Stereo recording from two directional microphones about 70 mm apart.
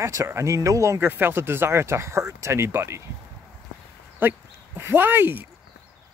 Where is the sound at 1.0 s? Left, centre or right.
Right.